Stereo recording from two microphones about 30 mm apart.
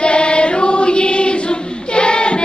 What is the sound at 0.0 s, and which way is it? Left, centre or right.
Choir, left.